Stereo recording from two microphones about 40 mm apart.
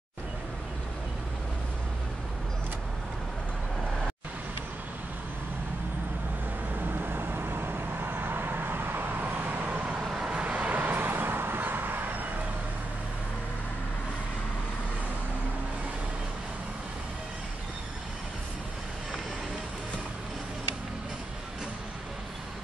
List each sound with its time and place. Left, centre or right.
6.8 s vehicle: right
10.0 s vehicle: right